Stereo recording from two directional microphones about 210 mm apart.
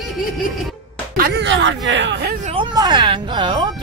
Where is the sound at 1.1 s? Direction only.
45° right (ahead or behind).